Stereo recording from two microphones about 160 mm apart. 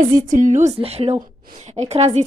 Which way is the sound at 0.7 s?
40° right (ahead or behind).